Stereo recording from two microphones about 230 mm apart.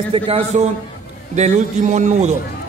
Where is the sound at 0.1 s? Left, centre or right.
Right.